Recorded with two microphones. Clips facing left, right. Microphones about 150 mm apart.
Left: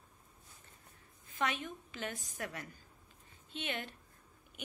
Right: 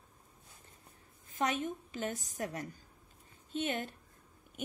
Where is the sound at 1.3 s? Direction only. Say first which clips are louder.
Right 4 dB; 40° right (ahead or behind).